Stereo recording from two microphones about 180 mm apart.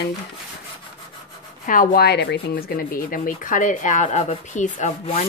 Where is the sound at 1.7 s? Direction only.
55° left (ahead or behind); by 2.9 s 70° left (ahead or behind).